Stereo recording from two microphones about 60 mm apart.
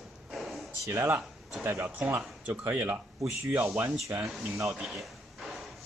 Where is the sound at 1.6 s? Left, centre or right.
Right.